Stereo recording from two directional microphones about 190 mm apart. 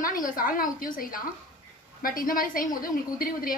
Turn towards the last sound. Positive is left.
turn(degrees=50)  # may be behind; listen again after turning